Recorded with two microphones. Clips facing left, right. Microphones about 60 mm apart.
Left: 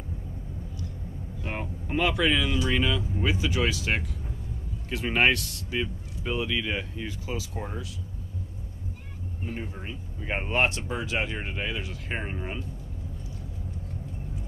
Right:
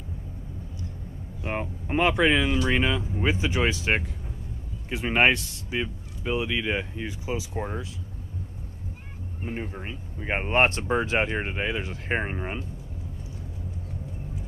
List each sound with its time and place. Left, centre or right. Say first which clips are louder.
1.4 s speech: right 4 dB; right
9.4 s speech: right 3 dB; right